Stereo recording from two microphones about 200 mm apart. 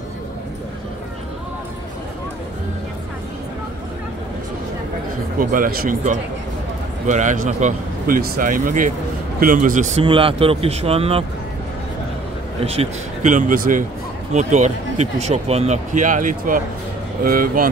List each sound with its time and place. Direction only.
5.4 s speech: 45° right (ahead or behind)
10.0 s speech: 25° right (ahead or behind)
12.6 s speech: 35° right (ahead or behind)